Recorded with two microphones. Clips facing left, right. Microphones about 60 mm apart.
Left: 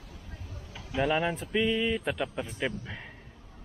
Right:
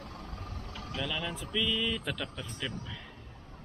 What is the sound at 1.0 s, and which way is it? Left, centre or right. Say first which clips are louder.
Speech: left 10 dB; left.